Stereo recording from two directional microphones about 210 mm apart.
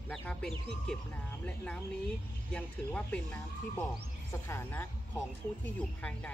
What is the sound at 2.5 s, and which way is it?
A woman's voice, 5° left (ahead or behind).